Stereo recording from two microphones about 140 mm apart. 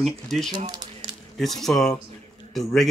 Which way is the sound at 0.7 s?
30° right (ahead or behind).